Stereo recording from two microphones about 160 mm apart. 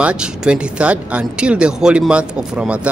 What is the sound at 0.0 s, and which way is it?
Speech, 5° right (ahead or behind).